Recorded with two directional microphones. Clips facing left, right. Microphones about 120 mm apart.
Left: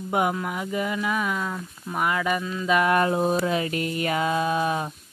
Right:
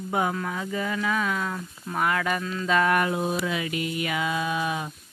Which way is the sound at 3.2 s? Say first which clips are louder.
Left 4 dB; 40° left (ahead or behind).